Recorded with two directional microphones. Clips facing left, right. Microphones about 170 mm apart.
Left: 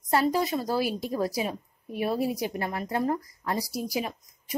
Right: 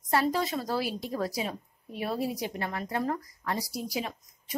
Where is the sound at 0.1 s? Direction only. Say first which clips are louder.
Left 3 dB; 25° left (ahead or behind).